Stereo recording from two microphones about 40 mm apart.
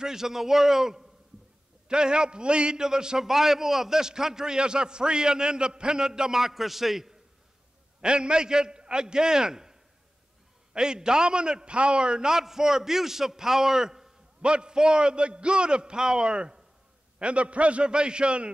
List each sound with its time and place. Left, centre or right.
0.0 s a man's voice: centre
8.0 s a man's voice: right
14.4 s a man's voice: right